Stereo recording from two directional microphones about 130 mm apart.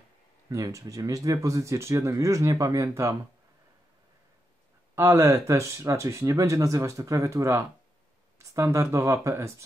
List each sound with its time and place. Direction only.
0.5 s speech: 25° right (ahead or behind)
4.9 s speech: 20° right (ahead or behind)